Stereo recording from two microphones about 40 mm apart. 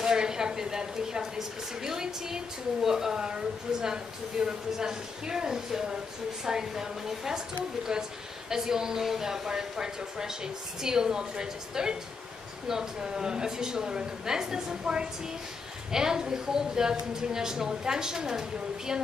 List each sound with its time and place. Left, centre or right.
0.0 s a woman's voice: centre